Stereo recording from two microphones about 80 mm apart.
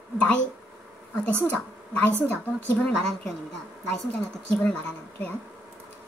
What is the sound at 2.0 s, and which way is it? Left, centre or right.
Speech, left.